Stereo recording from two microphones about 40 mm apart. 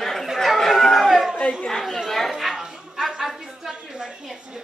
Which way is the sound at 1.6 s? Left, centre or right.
Centre.